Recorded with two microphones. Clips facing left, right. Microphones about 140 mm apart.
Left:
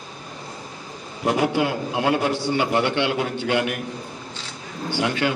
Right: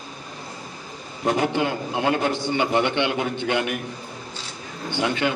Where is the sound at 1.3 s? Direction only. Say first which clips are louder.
Left 1 dB; 5° left (ahead or behind).